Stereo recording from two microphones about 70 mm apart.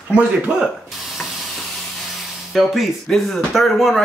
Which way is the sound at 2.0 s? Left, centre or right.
Centre.